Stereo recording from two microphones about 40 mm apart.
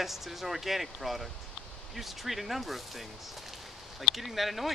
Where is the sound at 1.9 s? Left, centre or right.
Centre.